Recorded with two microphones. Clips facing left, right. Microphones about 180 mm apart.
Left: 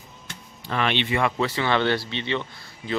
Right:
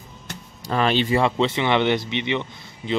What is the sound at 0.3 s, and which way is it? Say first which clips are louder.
Speech: right 4 dB; 35° right (ahead or behind).